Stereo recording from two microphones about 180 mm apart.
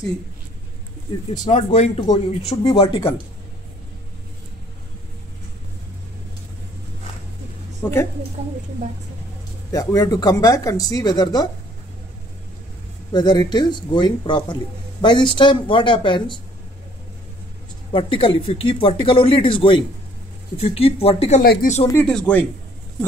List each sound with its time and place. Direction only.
1.5 s speech: 40° left (ahead or behind)
7.8 s a woman's voice: 20° left (ahead or behind)
9.7 s speech: 20° left (ahead or behind)
13.1 s speech: 25° left (ahead or behind)
17.9 s speech: 30° left (ahead or behind)
21.4 s speech: 50° left (ahead or behind)
21.9 s speech: 5° left (ahead or behind)